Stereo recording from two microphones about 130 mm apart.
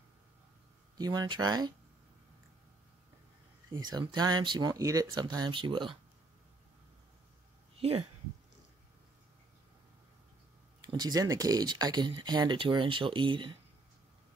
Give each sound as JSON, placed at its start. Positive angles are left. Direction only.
{"t": 0.9, "sound": "speech", "side_deg": -30}
{"t": 4.0, "sound": "speech", "side_deg": -35}
{"t": 10.8, "sound": "speech", "side_deg": -35}